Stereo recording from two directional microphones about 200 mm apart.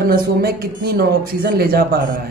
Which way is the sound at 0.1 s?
50° right (ahead or behind).